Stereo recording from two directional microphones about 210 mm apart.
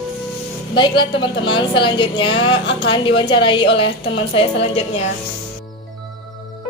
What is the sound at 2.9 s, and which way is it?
Speech, 25° left (ahead or behind).